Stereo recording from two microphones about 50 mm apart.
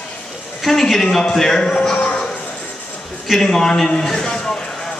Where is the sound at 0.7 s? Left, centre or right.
Centre.